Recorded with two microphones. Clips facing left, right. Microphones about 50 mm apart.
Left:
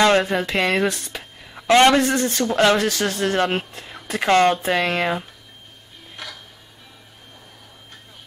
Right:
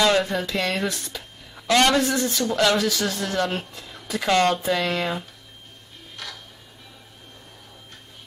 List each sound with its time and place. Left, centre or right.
0.0 s speech: left
1.5 s a sound: left
2.1 s speech: left
2.4 s speech: left
2.9 s speech: left
6.2 s music: centre